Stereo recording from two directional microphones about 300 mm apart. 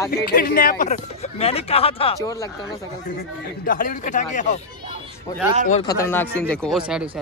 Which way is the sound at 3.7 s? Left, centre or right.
Left.